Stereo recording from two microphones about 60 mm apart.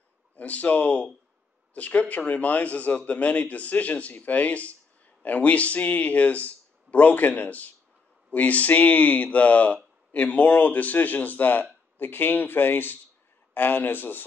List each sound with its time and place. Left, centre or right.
0.4 s speech: left